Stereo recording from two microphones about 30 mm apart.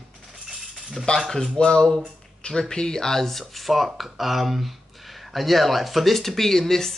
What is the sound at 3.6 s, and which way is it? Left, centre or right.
A man's voice, centre.